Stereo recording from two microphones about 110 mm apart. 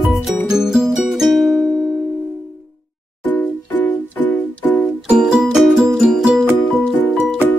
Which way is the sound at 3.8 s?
15° left (ahead or behind).